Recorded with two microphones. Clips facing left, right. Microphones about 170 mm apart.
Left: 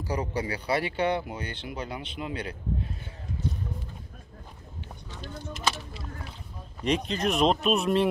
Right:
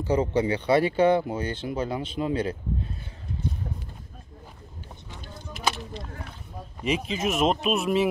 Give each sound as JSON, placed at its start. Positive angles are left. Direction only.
{"t": 0.0, "sound": "speech", "side_deg": -25}
{"t": 6.8, "sound": "speech", "side_deg": -5}